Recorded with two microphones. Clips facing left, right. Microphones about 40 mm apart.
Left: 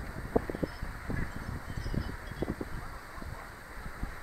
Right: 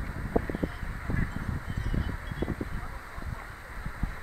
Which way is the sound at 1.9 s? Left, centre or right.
Right.